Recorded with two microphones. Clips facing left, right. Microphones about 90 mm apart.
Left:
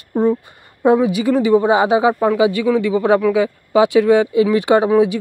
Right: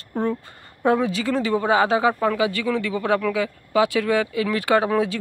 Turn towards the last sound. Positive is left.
turn(degrees=15)  # may be behind; listen again after turning